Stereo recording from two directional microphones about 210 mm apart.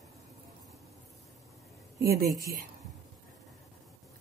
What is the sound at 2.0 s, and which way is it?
Speech, 45° right (ahead or behind).